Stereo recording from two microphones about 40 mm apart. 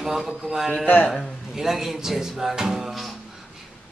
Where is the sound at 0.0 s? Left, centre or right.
Centre.